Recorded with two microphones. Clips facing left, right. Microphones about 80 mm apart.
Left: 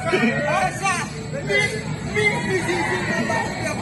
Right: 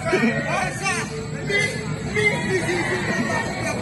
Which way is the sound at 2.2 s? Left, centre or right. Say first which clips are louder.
Even; centre.